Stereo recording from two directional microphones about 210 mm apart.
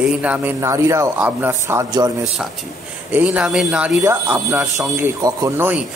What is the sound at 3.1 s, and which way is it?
Speech, 5° right (ahead or behind).